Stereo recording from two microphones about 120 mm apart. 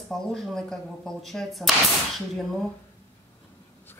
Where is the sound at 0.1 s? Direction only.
Centre (ahead or behind).